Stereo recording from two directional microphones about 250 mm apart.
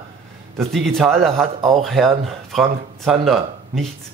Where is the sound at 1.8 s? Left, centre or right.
Centre.